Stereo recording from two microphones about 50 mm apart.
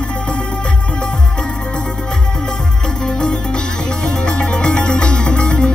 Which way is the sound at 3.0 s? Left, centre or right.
Centre.